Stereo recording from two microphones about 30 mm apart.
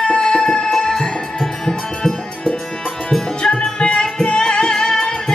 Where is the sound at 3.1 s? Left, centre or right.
Left.